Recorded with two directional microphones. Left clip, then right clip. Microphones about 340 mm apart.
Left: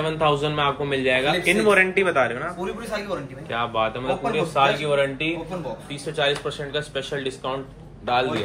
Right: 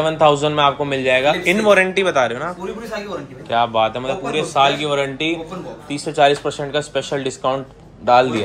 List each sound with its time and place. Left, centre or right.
0.0 s a man's voice: centre